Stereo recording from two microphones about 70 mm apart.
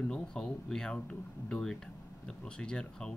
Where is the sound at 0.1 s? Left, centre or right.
Centre.